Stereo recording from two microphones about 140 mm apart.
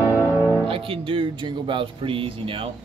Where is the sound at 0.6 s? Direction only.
40° right (ahead or behind).